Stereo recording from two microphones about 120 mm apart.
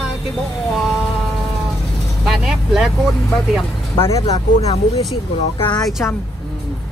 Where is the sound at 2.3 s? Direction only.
5° right (ahead or behind).